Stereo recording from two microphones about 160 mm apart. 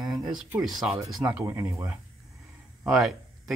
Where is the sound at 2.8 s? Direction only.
5° right (ahead or behind).